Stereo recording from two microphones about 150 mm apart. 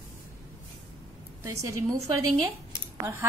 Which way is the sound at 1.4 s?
20° right (ahead or behind).